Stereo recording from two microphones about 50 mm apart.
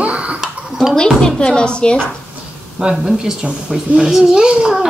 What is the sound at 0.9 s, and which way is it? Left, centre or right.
Speech, centre.